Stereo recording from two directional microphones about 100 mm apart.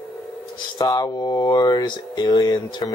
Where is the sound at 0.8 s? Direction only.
35° left (ahead or behind).